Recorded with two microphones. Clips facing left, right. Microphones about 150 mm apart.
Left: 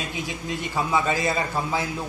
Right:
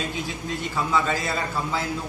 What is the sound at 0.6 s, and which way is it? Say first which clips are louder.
Speech: even; 15° left (ahead or behind).